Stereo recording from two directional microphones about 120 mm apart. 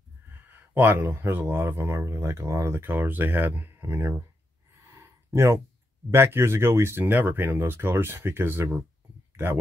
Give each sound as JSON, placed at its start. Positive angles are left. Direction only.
{"t": 0.5, "sound": "speech", "side_deg": -15}
{"t": 4.9, "sound": "a sound", "side_deg": -25}
{"t": 6.0, "sound": "speech", "side_deg": -20}